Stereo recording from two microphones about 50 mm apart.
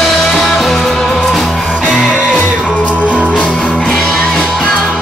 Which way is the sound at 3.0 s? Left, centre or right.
Right.